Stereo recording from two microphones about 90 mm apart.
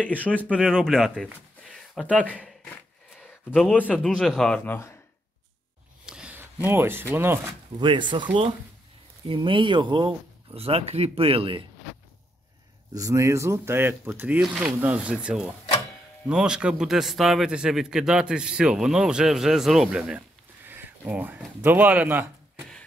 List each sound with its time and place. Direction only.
0.3 s speech: 10° left (ahead or behind)
2.6 s a sound: 20° left (ahead or behind)
3.6 s speech: 20° left (ahead or behind)
4.4 s speech: 5° left (ahead or behind)
6.0 s a sound: 10° right (ahead or behind)
6.3 s speech: 25° right (ahead or behind)
7.8 s speech: 60° right (ahead or behind); by 11.6 s 85° right
12.9 s a man's voice: 35° right (ahead or behind); by 20.2 s 5° right (ahead or behind)
20.2 s a sound: 25° right (ahead or behind)
21.5 s speech: 20° right (ahead or behind)